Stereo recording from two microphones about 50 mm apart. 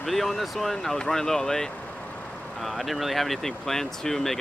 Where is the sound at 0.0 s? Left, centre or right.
Centre.